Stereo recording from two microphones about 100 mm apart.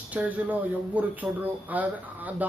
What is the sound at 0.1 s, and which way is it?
Speech, 15° right (ahead or behind).